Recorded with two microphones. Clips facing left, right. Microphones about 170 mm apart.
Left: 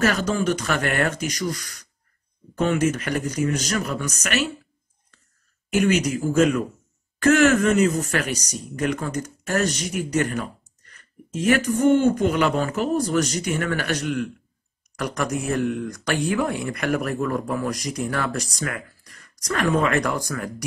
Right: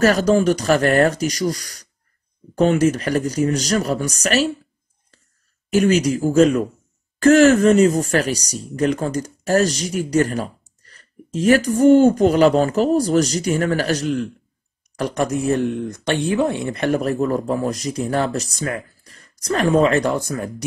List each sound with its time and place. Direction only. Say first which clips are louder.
0.0 s speech: right 7 dB; 40° right (ahead or behind)
5.7 s speech: right 4 dB; 35° right (ahead or behind)